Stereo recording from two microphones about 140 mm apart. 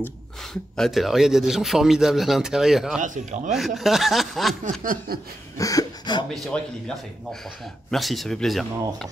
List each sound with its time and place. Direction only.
0.5 s a man's voice: 5° left (ahead or behind)
3.0 s speech: 60° right (ahead or behind)
3.5 s a man's voice: centre (ahead or behind)
4.6 s snicker: 85° right
5.6 s a sound: 25° left (ahead or behind)
6.3 s a man's voice: centre (ahead or behind)
7.9 s a man's voice: centre (ahead or behind)